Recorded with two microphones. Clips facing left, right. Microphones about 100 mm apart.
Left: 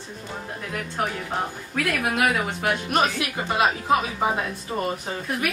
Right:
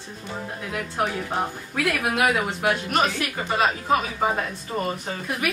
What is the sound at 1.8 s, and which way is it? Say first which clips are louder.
A woman's voice: right 1 dB; centre (ahead or behind).